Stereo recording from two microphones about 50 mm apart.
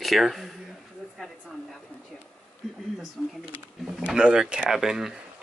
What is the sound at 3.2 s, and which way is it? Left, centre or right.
Speech, centre.